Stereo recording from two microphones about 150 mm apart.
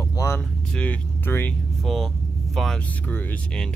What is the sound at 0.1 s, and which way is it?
Vehicle, 20° left (ahead or behind).